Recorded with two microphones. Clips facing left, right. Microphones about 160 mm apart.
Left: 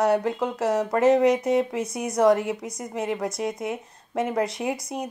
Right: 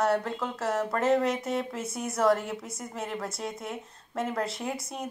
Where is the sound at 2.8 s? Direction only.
5° left (ahead or behind).